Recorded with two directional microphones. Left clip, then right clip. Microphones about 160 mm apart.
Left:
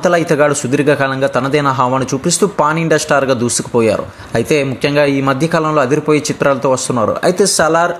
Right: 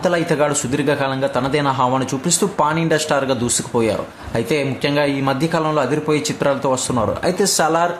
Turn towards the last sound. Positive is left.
turn(degrees=20)  # may be behind; listen again after turning